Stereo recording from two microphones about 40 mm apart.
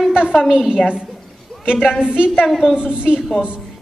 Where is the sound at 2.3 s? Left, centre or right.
Centre.